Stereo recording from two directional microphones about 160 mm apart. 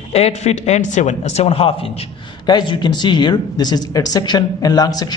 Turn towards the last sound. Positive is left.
turn(degrees=25)  # may be behind; listen again after turning